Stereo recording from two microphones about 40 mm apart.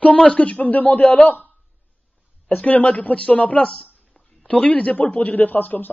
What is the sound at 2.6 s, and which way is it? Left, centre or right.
A man's voice, left.